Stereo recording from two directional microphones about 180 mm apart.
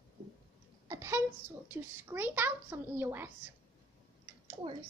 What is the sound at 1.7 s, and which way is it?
A child's voice, 10° right (ahead or behind).